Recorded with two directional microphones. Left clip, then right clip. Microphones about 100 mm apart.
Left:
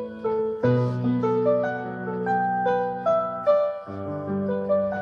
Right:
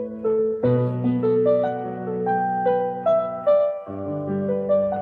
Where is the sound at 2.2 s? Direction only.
25° right (ahead or behind).